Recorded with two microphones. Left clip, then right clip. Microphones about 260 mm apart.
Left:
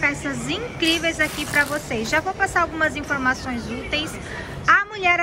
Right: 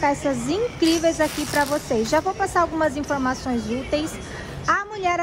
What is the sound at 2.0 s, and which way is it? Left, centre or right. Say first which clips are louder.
A woman's voice: even; centre.